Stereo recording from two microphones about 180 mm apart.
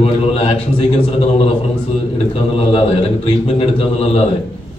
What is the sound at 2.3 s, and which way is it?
A man's voice, 35° left (ahead or behind).